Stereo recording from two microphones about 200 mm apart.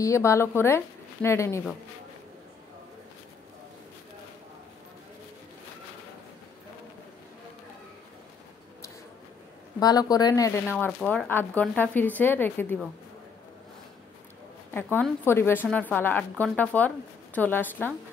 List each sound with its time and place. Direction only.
0.0 s a woman's voice: 15° left (ahead or behind)
9.8 s speech: 20° left (ahead or behind)
10.9 s a woman's voice: 5° left (ahead or behind)
14.7 s a woman's voice: 10° left (ahead or behind)